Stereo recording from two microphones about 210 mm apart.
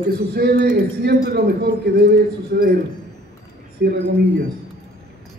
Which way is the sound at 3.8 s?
45° right (ahead or behind).